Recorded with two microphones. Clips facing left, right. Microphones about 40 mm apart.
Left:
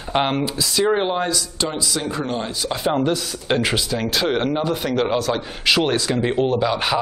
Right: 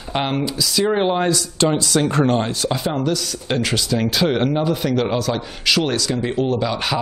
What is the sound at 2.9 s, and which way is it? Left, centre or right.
A man's voice, left.